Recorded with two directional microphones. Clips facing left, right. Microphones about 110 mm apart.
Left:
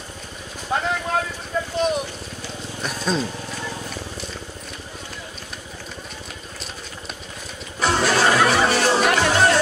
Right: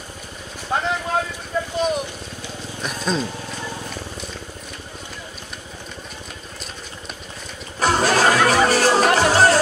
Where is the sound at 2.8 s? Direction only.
Centre (ahead or behind).